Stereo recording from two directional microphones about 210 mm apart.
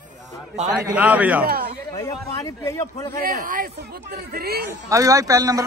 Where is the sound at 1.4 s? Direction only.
45° right (ahead or behind).